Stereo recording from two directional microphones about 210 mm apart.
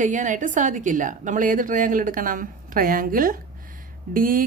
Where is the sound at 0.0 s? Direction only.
35° right (ahead or behind).